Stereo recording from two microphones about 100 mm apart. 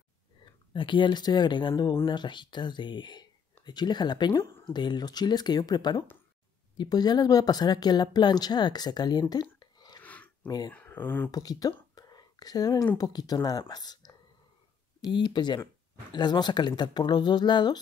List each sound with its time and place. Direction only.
0.7 s speech: 55° left (ahead or behind)
9.3 s a sound: 45° left (ahead or behind)
10.0 s a sound: 15° left (ahead or behind)
10.7 s speech: 15° left (ahead or behind)
11.3 s whispering: 40° left (ahead or behind)
12.9 s speech: 40° left (ahead or behind)